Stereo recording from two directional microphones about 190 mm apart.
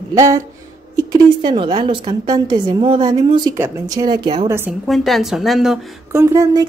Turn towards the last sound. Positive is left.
turn(degrees=-15)  # may be behind; listen again after turning